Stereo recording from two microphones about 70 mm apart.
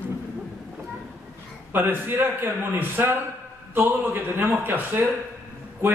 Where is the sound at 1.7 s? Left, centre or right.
Right.